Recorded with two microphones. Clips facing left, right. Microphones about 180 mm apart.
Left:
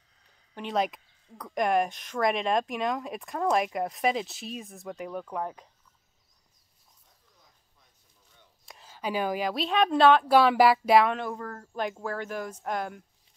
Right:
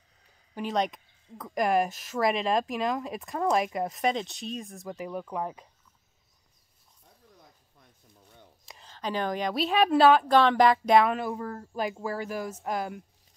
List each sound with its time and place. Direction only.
0.6 s speech: centre (ahead or behind)
7.7 s a sound: 60° right (ahead or behind)
8.6 s a woman's voice: 5° left (ahead or behind)
10.2 s speech: 10° left (ahead or behind)